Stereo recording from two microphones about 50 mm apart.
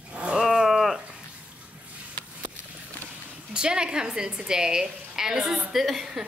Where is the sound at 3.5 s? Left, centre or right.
Centre.